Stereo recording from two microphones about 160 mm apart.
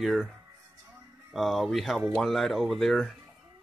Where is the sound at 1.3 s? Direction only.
Centre (ahead or behind).